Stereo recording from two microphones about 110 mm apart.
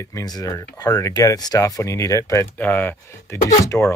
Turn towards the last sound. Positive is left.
turn(degrees=20)  # may be behind; listen again after turning